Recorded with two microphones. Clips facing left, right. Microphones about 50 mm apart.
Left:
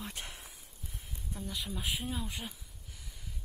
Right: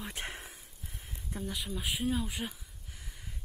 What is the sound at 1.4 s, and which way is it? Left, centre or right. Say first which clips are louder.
Speech: right 1 dB; centre.